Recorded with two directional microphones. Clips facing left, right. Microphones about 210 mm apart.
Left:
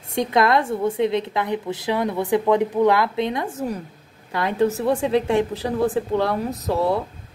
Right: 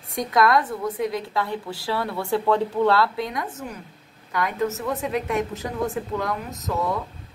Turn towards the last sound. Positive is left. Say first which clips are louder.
# left 5 dB
turn(degrees=30)  # may be behind; listen again after turning